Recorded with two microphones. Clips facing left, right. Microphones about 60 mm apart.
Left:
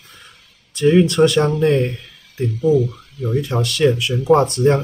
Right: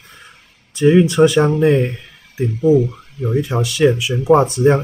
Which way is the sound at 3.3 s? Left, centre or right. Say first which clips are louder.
Right 1 dB; centre.